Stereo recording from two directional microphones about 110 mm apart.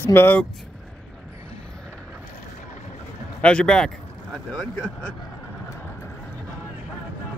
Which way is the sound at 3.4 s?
10° left (ahead or behind).